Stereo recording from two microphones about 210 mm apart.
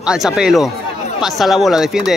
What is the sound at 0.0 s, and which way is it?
Speech, centre (ahead or behind).